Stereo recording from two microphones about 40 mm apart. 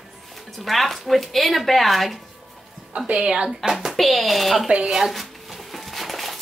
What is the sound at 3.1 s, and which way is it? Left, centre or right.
Speech, right.